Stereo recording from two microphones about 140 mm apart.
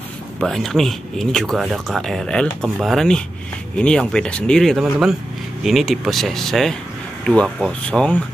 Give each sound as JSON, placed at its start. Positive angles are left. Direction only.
{"t": 0.4, "sound": "speech", "side_deg": 0}